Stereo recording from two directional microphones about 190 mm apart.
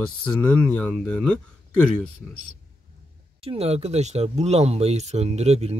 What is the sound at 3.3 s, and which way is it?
Speech, 30° right (ahead or behind).